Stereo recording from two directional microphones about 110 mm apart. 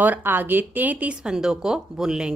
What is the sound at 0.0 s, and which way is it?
Speech, 15° right (ahead or behind).